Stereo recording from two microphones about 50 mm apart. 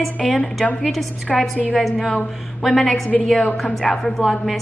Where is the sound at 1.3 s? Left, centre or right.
Left.